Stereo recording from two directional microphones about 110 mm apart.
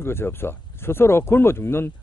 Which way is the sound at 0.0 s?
20° left (ahead or behind).